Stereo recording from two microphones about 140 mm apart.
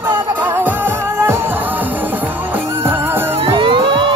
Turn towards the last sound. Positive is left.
turn(degrees=-35)  # may be behind; listen again after turning